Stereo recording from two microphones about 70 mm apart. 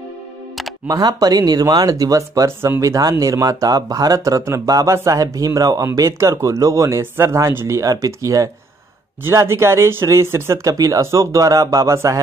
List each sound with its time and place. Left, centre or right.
0.8 s speech: right
9.2 s speech: right
10.7 s speech: right